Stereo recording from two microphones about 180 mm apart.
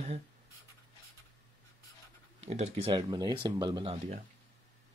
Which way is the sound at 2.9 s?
20° right (ahead or behind).